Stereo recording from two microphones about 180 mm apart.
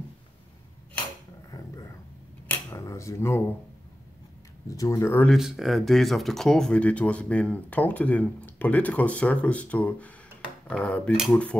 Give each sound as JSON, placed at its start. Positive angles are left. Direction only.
{"t": 2.7, "sound": "a sound", "side_deg": 15}
{"t": 4.6, "sound": "speech", "side_deg": 20}
{"t": 5.3, "sound": "speech", "side_deg": 0}